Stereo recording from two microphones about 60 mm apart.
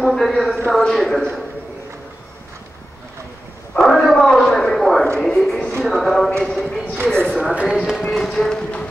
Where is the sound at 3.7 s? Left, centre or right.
Centre.